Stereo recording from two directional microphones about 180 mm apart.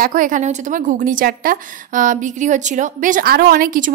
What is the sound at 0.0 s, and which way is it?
A woman's voice, 45° right (ahead or behind).